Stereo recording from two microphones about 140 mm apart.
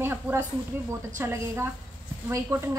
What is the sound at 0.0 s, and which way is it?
A woman's voice, 15° right (ahead or behind).